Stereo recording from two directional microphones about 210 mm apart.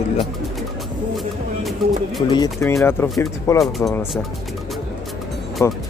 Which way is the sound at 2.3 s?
15° left (ahead or behind).